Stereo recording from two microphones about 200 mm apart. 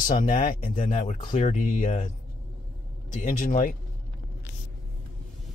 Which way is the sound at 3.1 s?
35° left (ahead or behind).